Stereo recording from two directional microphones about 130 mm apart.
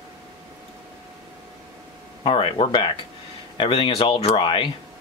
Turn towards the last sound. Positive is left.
turn(degrees=40)  # may be behind; listen again after turning